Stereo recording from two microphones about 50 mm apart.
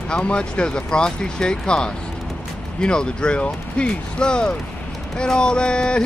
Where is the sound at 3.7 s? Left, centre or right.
Centre.